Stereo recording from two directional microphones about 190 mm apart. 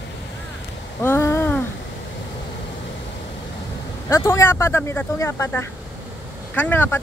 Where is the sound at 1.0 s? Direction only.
15° left (ahead or behind).